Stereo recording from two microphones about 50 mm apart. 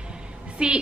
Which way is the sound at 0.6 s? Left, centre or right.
Centre.